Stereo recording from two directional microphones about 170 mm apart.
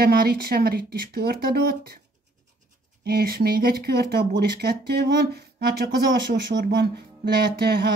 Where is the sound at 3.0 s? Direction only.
65° right (ahead or behind).